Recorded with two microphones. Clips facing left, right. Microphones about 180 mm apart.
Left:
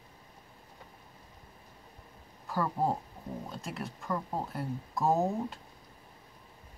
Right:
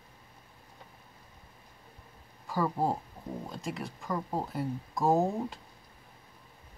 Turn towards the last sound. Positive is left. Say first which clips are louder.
# right 2 dB
turn(degrees=0)  # may be behind; listen again after turning